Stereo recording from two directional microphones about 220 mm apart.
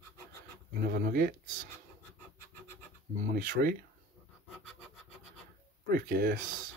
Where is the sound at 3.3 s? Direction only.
40° right (ahead or behind).